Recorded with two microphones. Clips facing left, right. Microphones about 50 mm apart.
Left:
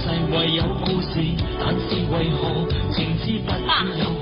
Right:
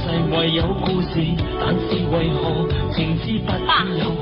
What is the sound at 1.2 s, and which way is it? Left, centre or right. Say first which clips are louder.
Music: right 2 dB; centre.